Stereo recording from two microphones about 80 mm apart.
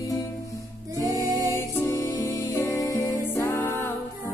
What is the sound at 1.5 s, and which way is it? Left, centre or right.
Music, left.